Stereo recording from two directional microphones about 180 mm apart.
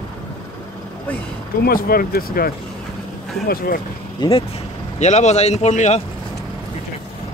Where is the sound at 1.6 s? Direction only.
55° left (ahead or behind).